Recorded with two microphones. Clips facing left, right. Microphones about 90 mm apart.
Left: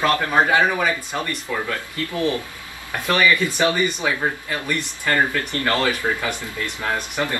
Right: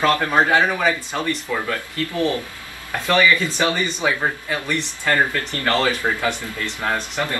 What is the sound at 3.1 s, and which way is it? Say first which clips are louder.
Speech: right 1 dB; 15° left (ahead or behind).